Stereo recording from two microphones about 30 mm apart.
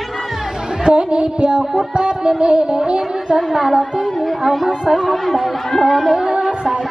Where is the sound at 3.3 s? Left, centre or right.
Centre.